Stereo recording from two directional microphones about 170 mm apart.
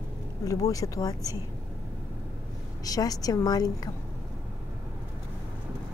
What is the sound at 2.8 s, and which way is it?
A woman's voice, 20° left (ahead or behind).